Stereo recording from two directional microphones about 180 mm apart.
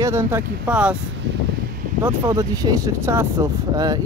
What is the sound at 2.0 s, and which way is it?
Speech, 15° right (ahead or behind).